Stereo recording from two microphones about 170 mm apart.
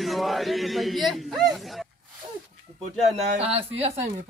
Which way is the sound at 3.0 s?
40° right (ahead or behind).